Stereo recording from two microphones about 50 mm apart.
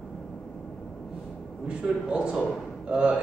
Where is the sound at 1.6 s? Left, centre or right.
Centre.